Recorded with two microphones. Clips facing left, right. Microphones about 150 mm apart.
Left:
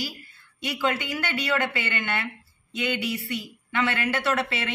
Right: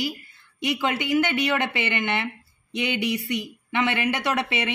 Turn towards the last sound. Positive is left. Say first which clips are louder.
# right 1 dB
turn(degrees=-15)  # may be behind; listen again after turning